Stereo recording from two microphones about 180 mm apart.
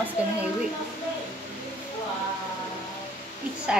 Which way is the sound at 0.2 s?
10° right (ahead or behind).